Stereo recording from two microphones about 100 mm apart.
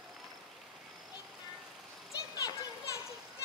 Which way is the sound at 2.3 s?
35° left (ahead or behind).